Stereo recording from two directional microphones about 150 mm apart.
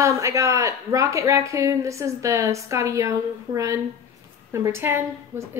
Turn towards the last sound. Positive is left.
turn(degrees=-15)  # may be behind; listen again after turning